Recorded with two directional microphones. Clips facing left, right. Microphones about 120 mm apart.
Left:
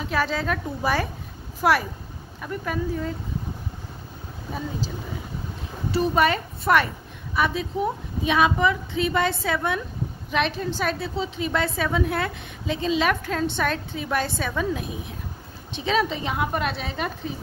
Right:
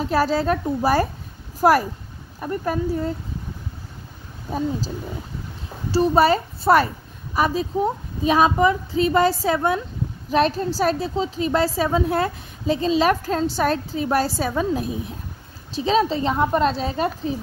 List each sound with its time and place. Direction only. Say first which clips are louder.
0.0 s a woman's voice: right 5 dB; 40° right (ahead or behind)
4.6 s a woman's voice: right 6 dB; 40° right (ahead or behind)